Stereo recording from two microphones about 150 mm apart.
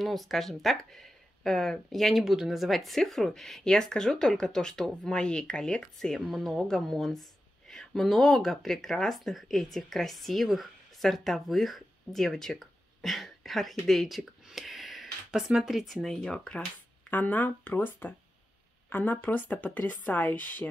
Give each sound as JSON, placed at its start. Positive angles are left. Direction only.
{"t": 0.0, "sound": "speech", "side_deg": 0}